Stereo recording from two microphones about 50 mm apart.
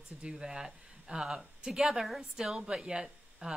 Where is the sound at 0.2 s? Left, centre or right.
Centre.